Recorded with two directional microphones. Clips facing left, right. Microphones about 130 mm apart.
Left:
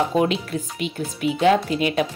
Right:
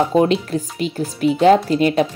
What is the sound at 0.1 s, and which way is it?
Speech, 35° right (ahead or behind).